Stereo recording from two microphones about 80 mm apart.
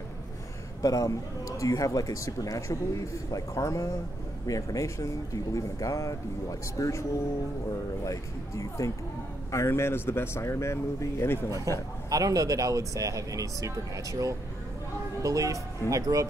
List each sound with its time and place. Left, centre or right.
0.8 s speech: left
12.1 s speech: right